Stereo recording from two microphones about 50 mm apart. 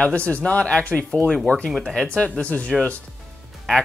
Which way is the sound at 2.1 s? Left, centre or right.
Left.